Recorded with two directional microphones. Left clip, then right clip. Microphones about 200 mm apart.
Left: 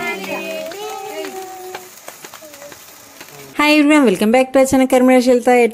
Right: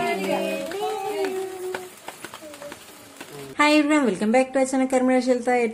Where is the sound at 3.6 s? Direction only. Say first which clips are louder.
Left 7 dB; 40° left (ahead or behind).